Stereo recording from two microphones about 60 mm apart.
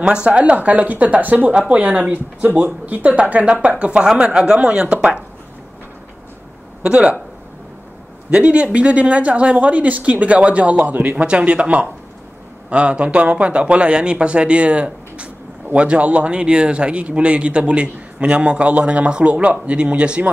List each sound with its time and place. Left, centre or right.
0.0 s speech: centre
6.8 s speech: centre
8.3 s speech: centre